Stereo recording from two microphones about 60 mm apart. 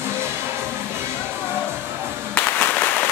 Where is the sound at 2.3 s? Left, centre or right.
Left.